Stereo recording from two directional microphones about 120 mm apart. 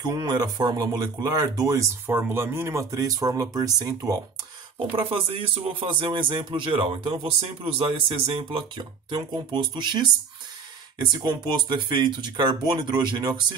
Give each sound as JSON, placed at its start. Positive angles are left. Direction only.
{"t": 0.0, "sound": "speech", "side_deg": -35}
{"t": 2.0, "sound": "speech", "side_deg": -20}
{"t": 4.7, "sound": "speech", "side_deg": -50}
{"t": 11.1, "sound": "speech", "side_deg": -40}